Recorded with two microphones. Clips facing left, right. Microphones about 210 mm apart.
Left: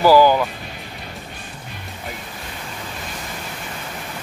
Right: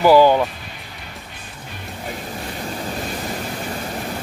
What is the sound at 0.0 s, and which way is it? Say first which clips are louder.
Speech: right 1 dB; 25° right (ahead or behind).